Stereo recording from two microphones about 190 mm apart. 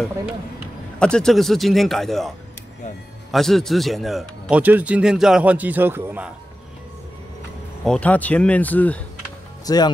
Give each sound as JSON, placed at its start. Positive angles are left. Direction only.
{"t": 0.9, "sound": "a man's voice", "side_deg": 5}
{"t": 7.8, "sound": "speech", "side_deg": 5}
{"t": 9.7, "sound": "speech", "side_deg": 20}